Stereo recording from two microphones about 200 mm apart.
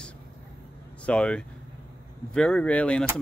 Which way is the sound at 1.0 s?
5° left (ahead or behind).